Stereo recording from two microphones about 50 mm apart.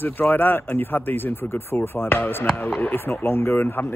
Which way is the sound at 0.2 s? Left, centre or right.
Left.